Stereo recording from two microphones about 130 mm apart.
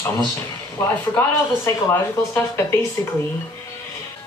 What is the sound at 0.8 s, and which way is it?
Speech, 20° left (ahead or behind).